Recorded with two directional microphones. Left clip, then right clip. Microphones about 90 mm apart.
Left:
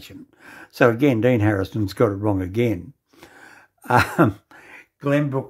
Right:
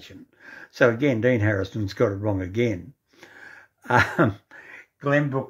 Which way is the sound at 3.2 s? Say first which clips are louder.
Right 1 dB; 25° left (ahead or behind).